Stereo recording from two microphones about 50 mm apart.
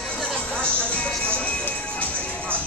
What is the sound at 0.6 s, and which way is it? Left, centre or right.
Music, left.